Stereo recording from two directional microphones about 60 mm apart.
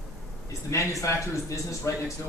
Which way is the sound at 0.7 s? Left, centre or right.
Left.